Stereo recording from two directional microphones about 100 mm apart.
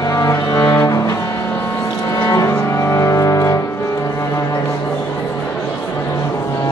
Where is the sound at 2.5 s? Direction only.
30° left (ahead or behind).